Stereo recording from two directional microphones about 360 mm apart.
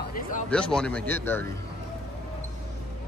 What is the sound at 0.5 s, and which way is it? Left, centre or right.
A man's voice, centre.